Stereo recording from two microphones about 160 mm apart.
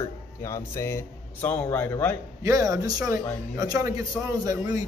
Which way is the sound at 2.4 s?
20° right (ahead or behind).